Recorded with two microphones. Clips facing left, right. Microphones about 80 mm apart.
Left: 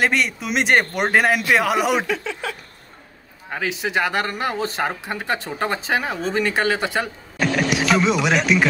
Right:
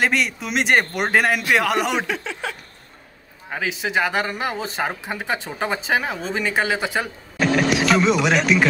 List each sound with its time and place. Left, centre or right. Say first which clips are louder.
0.0 s speech: left 1 dB; centre
2.1 s speech: left 1 dB; right
3.4 s speech: left 1 dB; centre